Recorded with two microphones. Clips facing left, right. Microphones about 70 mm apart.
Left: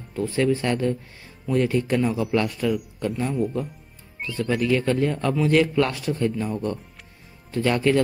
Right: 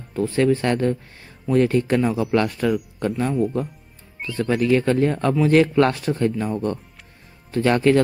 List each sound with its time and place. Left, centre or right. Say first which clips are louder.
0.1 s a man's voice: right 3 dB; right